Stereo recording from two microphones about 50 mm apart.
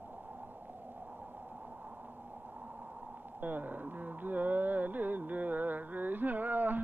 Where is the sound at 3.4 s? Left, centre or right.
Right.